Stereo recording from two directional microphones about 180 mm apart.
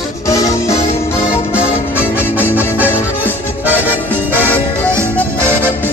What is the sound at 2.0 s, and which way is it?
Music, 10° left (ahead or behind).